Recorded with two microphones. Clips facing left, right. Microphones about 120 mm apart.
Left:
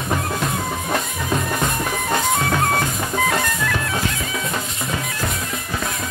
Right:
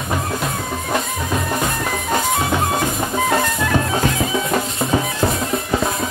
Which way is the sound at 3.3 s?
25° right (ahead or behind).